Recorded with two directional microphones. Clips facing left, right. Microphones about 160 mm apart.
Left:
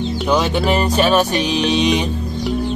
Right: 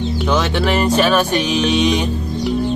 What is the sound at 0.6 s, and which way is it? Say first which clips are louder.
Music: right 1 dB; 35° left (ahead or behind).